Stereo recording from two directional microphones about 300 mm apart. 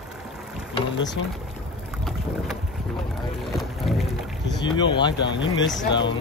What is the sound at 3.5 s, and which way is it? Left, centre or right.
Music, centre.